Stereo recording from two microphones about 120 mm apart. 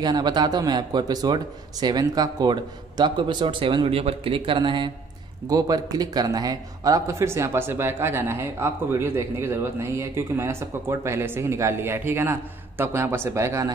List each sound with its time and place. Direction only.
0.0 s a man's voice: 35° right (ahead or behind)